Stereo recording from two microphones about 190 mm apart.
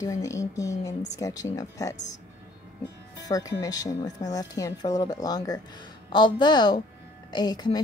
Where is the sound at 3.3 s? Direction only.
20° left (ahead or behind).